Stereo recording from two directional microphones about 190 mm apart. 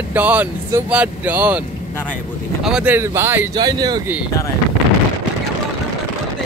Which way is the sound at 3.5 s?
20° right (ahead or behind).